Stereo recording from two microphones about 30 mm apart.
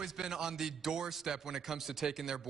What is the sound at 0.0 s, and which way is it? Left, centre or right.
A man's voice, centre.